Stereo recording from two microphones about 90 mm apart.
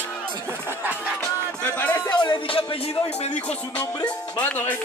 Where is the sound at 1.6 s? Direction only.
15° left (ahead or behind).